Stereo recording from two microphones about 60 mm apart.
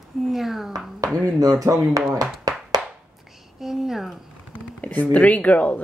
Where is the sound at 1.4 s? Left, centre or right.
Right.